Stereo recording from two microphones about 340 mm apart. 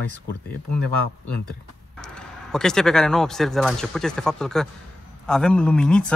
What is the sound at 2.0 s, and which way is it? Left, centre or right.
A man's voice, centre.